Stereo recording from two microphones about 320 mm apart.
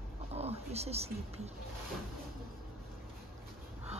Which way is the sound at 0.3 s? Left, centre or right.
Centre.